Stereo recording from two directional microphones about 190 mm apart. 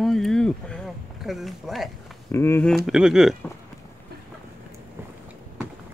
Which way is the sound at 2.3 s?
15° left (ahead or behind).